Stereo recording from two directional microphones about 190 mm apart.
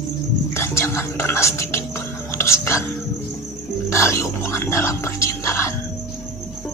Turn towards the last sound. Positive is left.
turn(degrees=15)  # may be behind; listen again after turning